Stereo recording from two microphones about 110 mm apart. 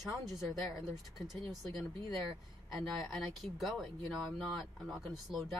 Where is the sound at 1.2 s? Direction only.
Centre (ahead or behind).